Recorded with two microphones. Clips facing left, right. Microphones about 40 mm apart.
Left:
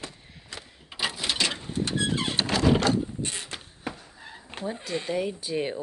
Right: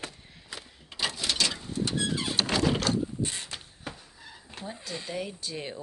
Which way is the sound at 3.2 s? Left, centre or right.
Left.